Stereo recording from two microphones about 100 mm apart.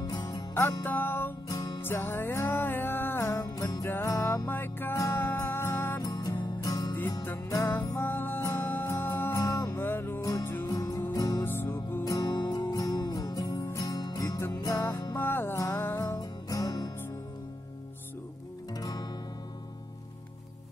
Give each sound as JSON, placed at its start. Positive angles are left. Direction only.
{"t": 0.0, "sound": "music", "side_deg": 40}
{"t": 0.8, "sound": "music", "side_deg": 20}
{"t": 1.5, "sound": "music", "side_deg": 40}
{"t": 1.8, "sound": "music", "side_deg": 20}
{"t": 5.9, "sound": "music", "side_deg": 35}
{"t": 7.2, "sound": "music", "side_deg": 25}
{"t": 10.7, "sound": "music", "side_deg": 40}
{"t": 11.4, "sound": "music", "side_deg": 20}
{"t": 12.0, "sound": "music", "side_deg": 40}
{"t": 14.8, "sound": "music", "side_deg": 20}
{"t": 16.0, "sound": "music", "side_deg": 35}
{"t": 18.8, "sound": "music", "side_deg": 40}